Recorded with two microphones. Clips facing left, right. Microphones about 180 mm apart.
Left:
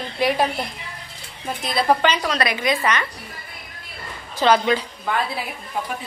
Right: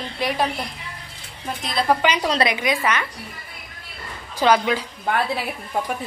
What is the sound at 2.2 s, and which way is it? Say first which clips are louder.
Speech: right 2 dB; 25° right (ahead or behind).